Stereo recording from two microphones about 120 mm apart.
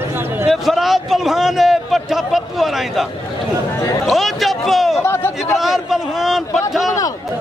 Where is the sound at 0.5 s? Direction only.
Centre (ahead or behind).